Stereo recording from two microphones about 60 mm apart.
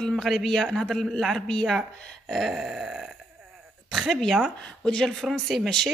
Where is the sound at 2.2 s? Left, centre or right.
Centre.